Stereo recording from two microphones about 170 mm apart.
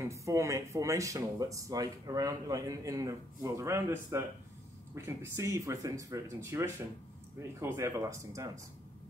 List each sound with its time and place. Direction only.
0.0 s speech: 20° right (ahead or behind)